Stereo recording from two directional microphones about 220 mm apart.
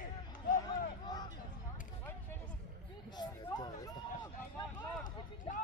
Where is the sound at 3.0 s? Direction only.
20° left (ahead or behind).